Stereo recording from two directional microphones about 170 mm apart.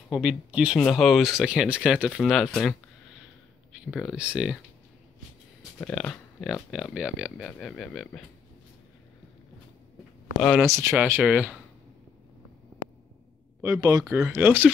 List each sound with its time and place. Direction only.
0.1 s speech: 5° right (ahead or behind)
3.9 s speech: centre (ahead or behind)
5.8 s speech: 10° left (ahead or behind)
10.4 s speech: centre (ahead or behind)
10.7 s speech: 15° right (ahead or behind)
13.6 s speech: 20° right (ahead or behind)